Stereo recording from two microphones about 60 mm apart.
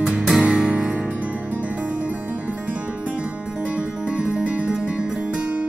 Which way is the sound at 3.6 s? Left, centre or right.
Right.